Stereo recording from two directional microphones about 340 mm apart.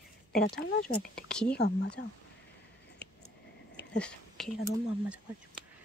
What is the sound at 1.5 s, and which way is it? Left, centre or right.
Speech, left.